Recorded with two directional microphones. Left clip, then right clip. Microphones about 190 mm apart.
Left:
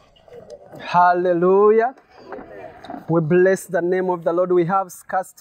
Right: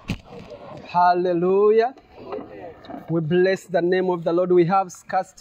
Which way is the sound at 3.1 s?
35° left (ahead or behind).